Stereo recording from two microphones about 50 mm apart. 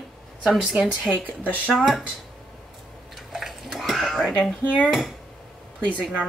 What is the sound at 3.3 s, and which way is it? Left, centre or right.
Dishes, centre.